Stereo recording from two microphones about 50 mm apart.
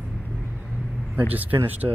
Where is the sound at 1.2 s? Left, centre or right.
Right.